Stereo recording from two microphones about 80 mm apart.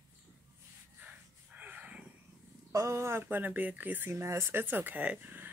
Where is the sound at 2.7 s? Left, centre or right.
Right.